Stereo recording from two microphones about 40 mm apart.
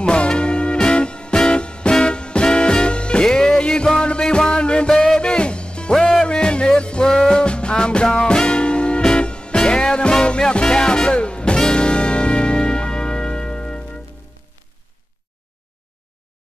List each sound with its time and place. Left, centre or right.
0.0 s music: left
7.4 s music: left